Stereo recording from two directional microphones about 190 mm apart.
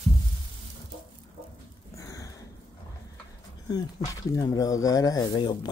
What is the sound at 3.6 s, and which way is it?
Speech, 20° left (ahead or behind).